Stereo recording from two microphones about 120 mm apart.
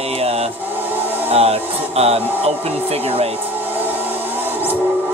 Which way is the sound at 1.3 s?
55° right (ahead or behind).